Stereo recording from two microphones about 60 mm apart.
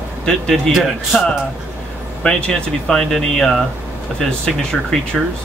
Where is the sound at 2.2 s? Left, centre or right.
Centre.